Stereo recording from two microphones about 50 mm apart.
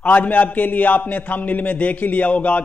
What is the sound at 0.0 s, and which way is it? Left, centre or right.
A man's voice, left.